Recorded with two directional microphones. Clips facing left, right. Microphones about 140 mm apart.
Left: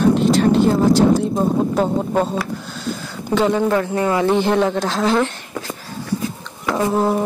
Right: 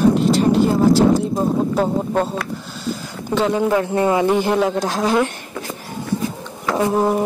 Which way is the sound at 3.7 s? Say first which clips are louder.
Right 1 dB; 20° right (ahead or behind).